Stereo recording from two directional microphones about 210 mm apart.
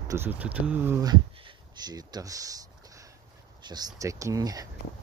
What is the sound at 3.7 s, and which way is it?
Speech, 20° right (ahead or behind).